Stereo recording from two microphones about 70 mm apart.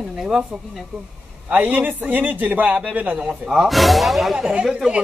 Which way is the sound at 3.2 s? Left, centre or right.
Centre.